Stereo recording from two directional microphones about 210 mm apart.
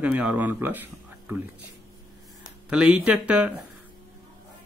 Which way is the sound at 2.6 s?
5° right (ahead or behind).